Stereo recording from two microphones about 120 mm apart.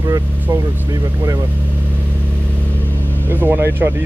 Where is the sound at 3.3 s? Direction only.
15° right (ahead or behind).